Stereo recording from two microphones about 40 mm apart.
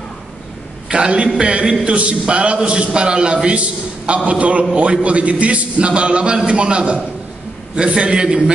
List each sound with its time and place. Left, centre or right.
0.8 s a man's voice: right